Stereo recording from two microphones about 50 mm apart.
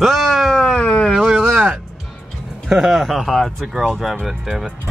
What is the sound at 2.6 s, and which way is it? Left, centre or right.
Speech, centre.